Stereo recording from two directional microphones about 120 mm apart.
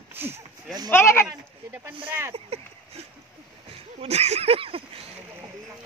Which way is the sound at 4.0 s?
65° right (ahead or behind).